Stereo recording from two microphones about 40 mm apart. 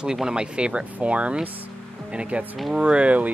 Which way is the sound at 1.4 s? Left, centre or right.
Right.